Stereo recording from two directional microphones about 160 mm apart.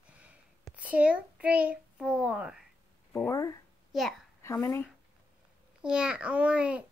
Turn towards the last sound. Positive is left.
turn(degrees=-5)  # may be behind; listen again after turning